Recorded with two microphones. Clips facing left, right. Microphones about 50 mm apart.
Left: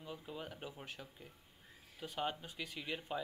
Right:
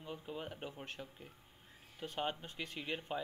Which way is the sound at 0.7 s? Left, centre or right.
Centre.